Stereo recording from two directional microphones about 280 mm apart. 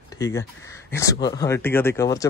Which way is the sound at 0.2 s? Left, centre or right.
Centre.